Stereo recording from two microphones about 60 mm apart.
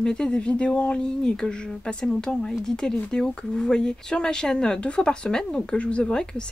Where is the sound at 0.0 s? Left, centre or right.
Centre.